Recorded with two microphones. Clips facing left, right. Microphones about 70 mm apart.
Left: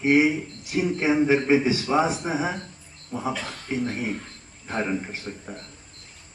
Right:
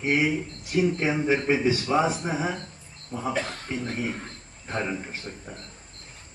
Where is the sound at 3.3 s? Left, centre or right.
Right.